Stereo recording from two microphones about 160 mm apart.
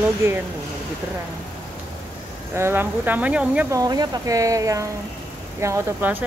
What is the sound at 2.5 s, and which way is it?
Speech, 15° right (ahead or behind).